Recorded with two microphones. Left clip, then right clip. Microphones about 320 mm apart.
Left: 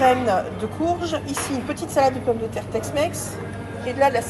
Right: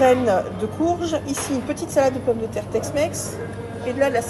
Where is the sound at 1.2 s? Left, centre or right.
Centre.